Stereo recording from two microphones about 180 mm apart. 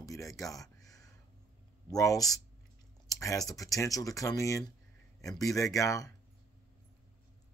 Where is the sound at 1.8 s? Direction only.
20° left (ahead or behind).